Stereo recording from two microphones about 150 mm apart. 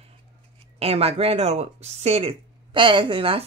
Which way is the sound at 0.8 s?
40° right (ahead or behind).